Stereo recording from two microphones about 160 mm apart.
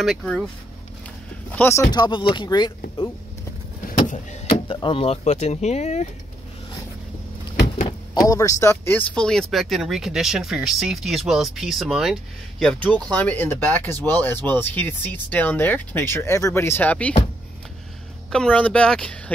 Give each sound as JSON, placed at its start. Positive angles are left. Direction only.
{"t": 0.0, "sound": "speech", "side_deg": 0}
{"t": 1.5, "sound": "speech", "side_deg": 15}
{"t": 4.6, "sound": "speech", "side_deg": 30}
{"t": 7.6, "sound": "a sound", "side_deg": 45}
{"t": 8.1, "sound": "speech", "side_deg": 20}
{"t": 18.3, "sound": "speech", "side_deg": 5}